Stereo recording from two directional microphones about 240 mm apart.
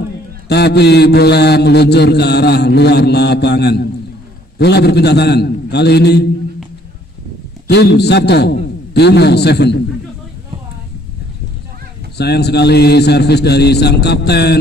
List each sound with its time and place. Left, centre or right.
0.5 s mantra: left
7.6 s mantra: left
12.2 s mantra: left